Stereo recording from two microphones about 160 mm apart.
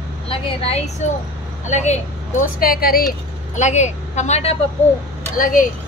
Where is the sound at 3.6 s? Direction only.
45° left (ahead or behind).